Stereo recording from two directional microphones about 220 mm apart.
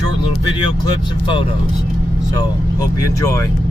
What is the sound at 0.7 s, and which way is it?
Speech, 20° left (ahead or behind).